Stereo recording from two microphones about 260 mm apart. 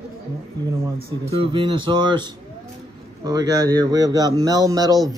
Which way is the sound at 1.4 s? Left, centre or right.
Centre.